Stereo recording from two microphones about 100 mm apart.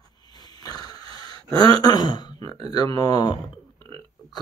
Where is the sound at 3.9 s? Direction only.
45° left (ahead or behind).